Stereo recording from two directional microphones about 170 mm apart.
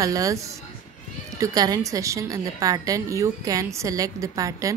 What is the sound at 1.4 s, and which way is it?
A woman's voice, 20° right (ahead or behind).